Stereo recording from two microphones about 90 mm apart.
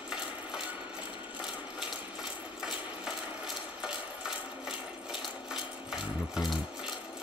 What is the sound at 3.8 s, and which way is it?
Ratchet, 5° right (ahead or behind).